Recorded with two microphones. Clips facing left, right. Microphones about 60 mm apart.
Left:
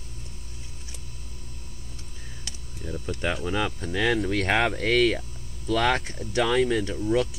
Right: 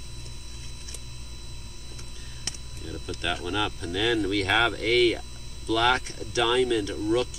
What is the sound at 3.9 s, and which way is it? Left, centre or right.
Speech, left.